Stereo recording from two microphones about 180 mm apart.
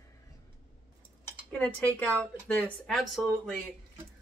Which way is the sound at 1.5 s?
10° left (ahead or behind).